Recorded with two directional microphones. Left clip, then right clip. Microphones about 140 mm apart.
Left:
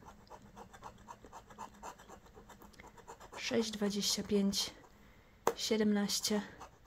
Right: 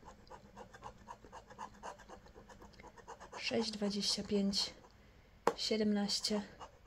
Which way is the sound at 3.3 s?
25° left (ahead or behind).